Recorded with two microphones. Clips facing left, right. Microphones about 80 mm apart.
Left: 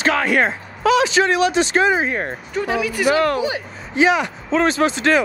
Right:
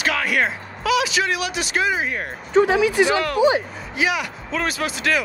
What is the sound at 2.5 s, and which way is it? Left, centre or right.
Speech, right.